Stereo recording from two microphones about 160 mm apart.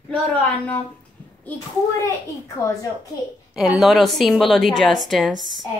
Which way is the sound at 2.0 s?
20° left (ahead or behind).